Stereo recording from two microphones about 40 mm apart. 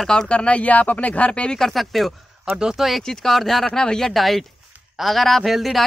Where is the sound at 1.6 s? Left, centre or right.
Centre.